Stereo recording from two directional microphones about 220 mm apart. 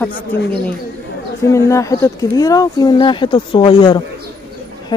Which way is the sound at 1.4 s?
15° left (ahead or behind).